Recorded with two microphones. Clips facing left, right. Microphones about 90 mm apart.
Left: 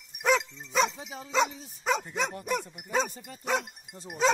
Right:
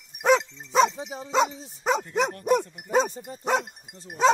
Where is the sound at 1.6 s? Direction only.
30° right (ahead or behind).